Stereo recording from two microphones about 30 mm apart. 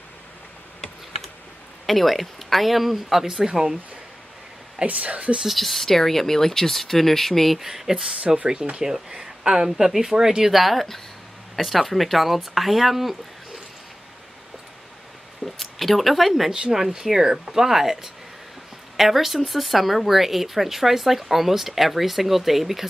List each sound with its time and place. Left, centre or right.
1.9 s speech: centre
3.3 s speech: centre
4.8 s a woman's voice: right
5.5 s speech: centre
7.6 s speech: centre
10.5 s speech: centre
15.4 s speech: centre
16.7 s speech: centre